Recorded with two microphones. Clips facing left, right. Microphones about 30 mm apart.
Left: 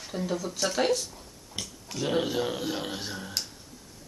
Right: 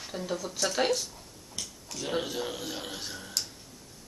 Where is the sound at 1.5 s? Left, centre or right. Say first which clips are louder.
Left 4 dB; centre.